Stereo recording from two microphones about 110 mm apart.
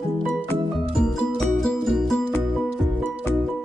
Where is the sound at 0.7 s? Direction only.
Centre (ahead or behind).